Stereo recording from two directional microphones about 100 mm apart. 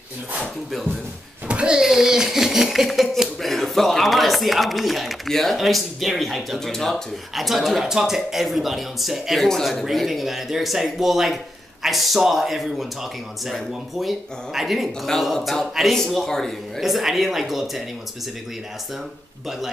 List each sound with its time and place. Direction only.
1.5 s a child's voice: 10° right (ahead or behind)